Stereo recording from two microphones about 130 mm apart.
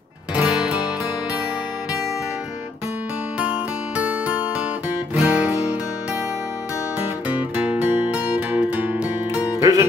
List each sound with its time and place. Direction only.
0.3 s music: 10° right (ahead or behind)
3.9 s music: 10° right (ahead or behind)
7.0 s music: 15° right (ahead or behind)
9.3 s music: 30° left (ahead or behind)
9.6 s music: 25° right (ahead or behind)